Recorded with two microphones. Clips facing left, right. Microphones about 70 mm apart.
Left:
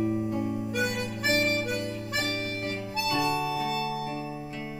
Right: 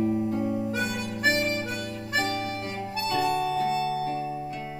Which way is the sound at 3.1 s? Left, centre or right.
Centre.